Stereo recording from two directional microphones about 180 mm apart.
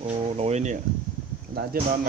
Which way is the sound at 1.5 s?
55° right (ahead or behind).